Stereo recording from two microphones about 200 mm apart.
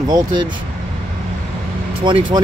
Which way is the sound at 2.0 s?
25° right (ahead or behind).